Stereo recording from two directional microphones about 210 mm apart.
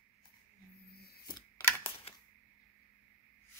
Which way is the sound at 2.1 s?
30° left (ahead or behind).